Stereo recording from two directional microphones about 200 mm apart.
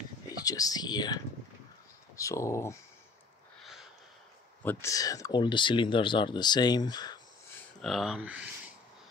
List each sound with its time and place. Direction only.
0.4 s speech: 20° left (ahead or behind)
4.6 s speech: 15° left (ahead or behind)
7.8 s speech: centre (ahead or behind)